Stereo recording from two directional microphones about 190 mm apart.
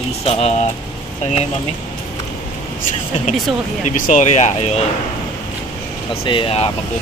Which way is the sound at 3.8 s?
40° left (ahead or behind).